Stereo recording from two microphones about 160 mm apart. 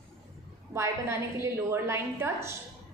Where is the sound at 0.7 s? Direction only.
15° right (ahead or behind).